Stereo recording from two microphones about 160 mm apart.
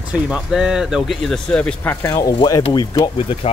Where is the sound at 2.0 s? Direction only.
25° left (ahead or behind).